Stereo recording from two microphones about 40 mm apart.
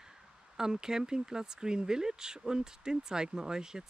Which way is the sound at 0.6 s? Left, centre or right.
Centre.